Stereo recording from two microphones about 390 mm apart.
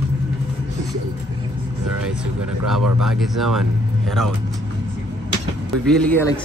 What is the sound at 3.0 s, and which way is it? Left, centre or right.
Speech, centre.